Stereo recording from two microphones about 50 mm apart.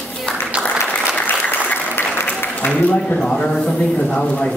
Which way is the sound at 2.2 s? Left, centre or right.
Left.